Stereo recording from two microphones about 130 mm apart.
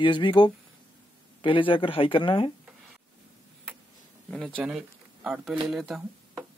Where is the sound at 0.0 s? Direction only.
40° left (ahead or behind).